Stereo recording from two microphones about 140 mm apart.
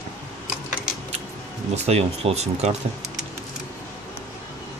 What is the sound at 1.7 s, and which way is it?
Speech, 50° right (ahead or behind).